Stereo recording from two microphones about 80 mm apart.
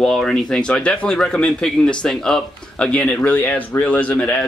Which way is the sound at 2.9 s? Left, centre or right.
Centre.